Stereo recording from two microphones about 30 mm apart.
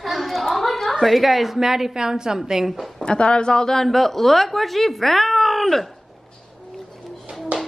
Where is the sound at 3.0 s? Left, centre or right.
Left.